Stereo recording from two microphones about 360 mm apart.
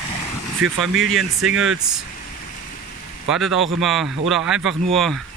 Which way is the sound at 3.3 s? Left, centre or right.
Centre.